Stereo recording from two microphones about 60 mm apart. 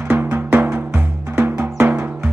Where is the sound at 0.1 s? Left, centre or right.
Right.